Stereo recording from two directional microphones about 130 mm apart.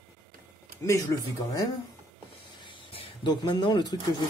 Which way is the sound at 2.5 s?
40° left (ahead or behind).